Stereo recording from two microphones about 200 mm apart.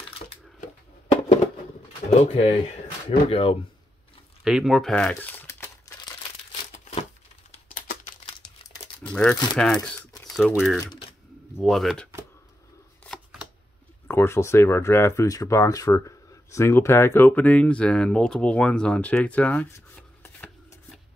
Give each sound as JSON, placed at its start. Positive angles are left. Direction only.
{"t": 2.0, "sound": "speech", "side_deg": 30}
{"t": 4.5, "sound": "speech", "side_deg": 0}
{"t": 6.6, "sound": "crumpling", "side_deg": 30}
{"t": 7.5, "sound": "typing", "side_deg": 40}
{"t": 9.1, "sound": "speech", "side_deg": 5}
{"t": 13.0, "sound": "shuffling cards", "side_deg": 0}
{"t": 14.0, "sound": "speech", "side_deg": 10}